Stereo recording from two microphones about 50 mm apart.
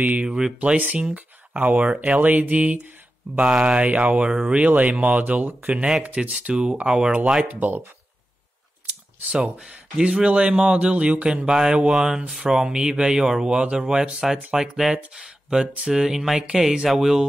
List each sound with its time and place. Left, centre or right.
0.2 s a man's voice: centre; by 5.8 s right
6.4 s a man's voice: centre
7.4 s speech: right
9.2 s a man's voice: centre
11.4 s speech: centre